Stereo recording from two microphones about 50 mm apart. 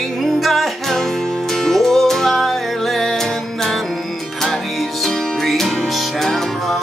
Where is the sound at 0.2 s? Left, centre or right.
Centre.